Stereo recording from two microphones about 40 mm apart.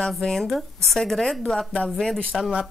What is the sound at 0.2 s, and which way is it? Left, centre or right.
Speech, centre.